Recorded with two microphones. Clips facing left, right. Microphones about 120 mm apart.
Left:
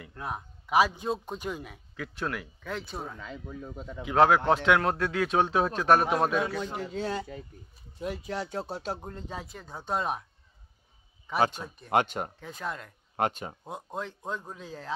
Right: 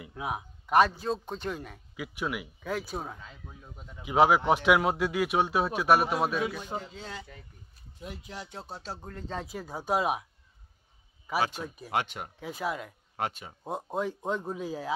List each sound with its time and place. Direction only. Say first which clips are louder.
0.0 s a man's voice: right 2 dB; 10° right (ahead or behind)
0.9 s speech: even; 5° left (ahead or behind)
2.0 s a man's voice: even; 10° right (ahead or behind)
3.2 s speech: left 9 dB; 75° left (ahead or behind); by 4.0 s 90° left
4.0 s a man's voice: left 1 dB; 10° right (ahead or behind)
6.8 s speech: left 9 dB; 60° left (ahead or behind)
8.0 s speech: left 8 dB; 80° left; by 9.0 s 60° left (ahead or behind)
9.0 s speech: left 1 dB; 25° left (ahead or behind)
9.5 s a man's voice: right 4 dB; 5° right (ahead or behind)
11.3 s speech: left 3 dB; 5° right (ahead or behind)
11.9 s speech: left 6 dB; 45° left (ahead or behind)
12.4 s a man's voice: right 3 dB; 5° right (ahead or behind)
13.1 s speech: left 5 dB; 50° left (ahead or behind)
13.8 s a man's voice: right 5 dB; 10° right (ahead or behind)